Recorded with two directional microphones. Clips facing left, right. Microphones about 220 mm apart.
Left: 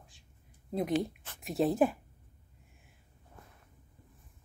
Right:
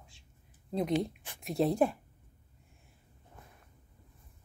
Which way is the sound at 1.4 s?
Centre (ahead or behind).